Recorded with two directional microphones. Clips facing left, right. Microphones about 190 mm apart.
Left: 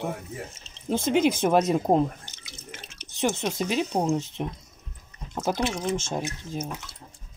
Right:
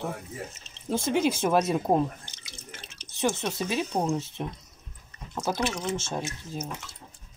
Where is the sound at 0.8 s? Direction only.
20° left (ahead or behind).